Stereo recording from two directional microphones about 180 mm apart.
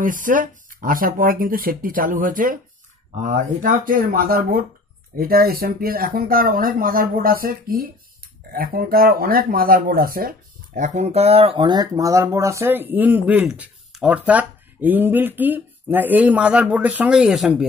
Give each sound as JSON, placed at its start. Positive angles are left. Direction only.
{"t": 0.0, "sound": "speech", "side_deg": -45}